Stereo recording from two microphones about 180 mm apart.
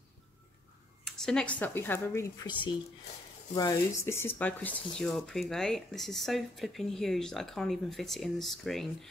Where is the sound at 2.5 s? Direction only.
25° left (ahead or behind).